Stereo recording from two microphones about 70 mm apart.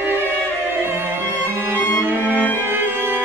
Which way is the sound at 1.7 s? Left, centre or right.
Left.